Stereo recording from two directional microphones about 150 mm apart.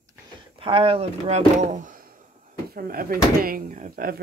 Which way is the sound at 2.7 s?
80° right.